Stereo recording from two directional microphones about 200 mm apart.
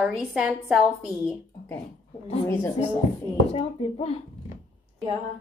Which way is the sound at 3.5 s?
30° left (ahead or behind).